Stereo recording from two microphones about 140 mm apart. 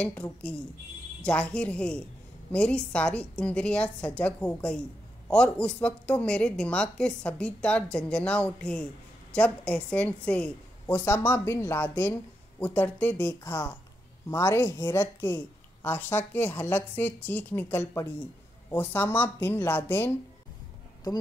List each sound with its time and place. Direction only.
0.0 s a woman's voice: 10° left (ahead or behind)